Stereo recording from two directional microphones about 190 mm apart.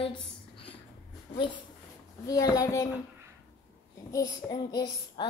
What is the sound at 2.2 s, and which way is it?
Child singing, 20° left (ahead or behind).